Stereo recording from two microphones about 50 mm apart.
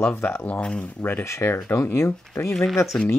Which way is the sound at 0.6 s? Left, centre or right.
Centre.